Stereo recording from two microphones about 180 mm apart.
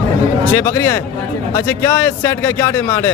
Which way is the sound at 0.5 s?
10° left (ahead or behind).